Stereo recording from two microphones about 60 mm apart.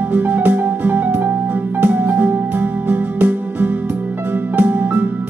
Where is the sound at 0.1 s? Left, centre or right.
Right.